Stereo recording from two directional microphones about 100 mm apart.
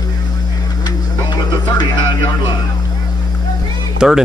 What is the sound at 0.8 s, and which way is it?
Radio, 45° left (ahead or behind).